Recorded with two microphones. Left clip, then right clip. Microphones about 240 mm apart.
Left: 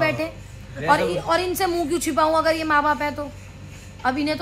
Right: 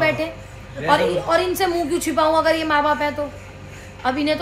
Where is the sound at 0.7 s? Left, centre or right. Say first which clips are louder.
Right 2 dB; centre.